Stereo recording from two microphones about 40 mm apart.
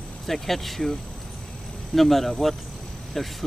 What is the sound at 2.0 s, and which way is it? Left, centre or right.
Speech, centre.